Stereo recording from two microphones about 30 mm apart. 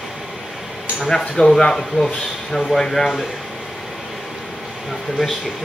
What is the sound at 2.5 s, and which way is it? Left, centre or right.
Speech, centre.